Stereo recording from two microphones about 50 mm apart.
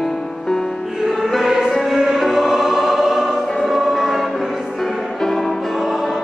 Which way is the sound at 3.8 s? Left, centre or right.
Centre.